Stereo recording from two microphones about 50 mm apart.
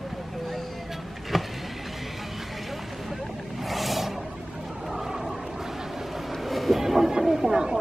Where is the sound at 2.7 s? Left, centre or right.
Centre.